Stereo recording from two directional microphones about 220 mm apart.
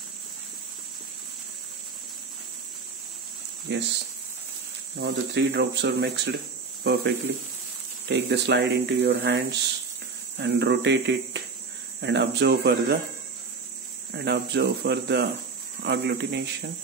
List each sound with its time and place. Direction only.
3.7 s speech: 50° right (ahead or behind)
4.9 s speech: 50° right (ahead or behind)
8.1 s speech: 50° right (ahead or behind)
14.1 s speech: 50° right (ahead or behind)